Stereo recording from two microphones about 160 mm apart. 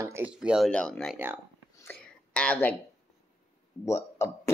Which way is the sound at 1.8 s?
10° left (ahead or behind).